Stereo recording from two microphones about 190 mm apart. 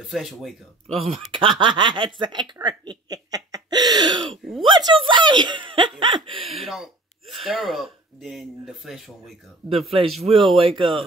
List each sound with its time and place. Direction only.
0.0 s speech: centre (ahead or behind)
0.9 s speech: 30° right (ahead or behind)
6.6 s speech: centre (ahead or behind)
9.9 s speech: 30° right (ahead or behind)